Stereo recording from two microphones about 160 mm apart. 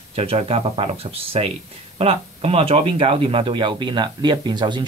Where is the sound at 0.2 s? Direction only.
40° right (ahead or behind).